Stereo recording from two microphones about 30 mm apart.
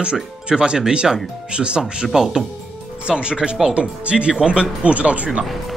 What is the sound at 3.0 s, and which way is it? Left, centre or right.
Speech, right.